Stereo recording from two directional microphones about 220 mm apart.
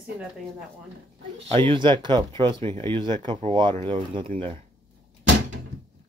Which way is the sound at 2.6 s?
10° left (ahead or behind).